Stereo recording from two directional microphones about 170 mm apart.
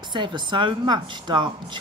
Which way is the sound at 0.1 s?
25° right (ahead or behind).